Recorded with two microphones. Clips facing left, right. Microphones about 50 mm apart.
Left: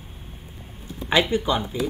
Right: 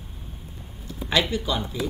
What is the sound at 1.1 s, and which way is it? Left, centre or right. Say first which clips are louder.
Speech: left 3 dB; left.